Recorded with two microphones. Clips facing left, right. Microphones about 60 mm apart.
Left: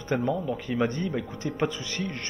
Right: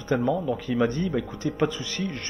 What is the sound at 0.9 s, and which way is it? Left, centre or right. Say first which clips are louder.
Speech: right 3 dB; right.